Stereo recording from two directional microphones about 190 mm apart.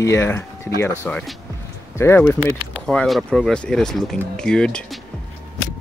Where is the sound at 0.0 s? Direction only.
15° left (ahead or behind).